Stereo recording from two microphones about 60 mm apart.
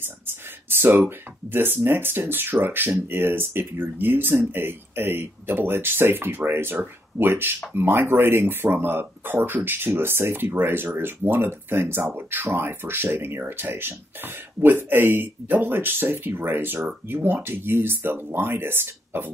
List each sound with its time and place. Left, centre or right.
0.0 s speech: right